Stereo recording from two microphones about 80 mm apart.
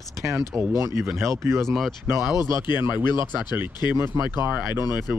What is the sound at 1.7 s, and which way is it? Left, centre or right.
Speech, centre.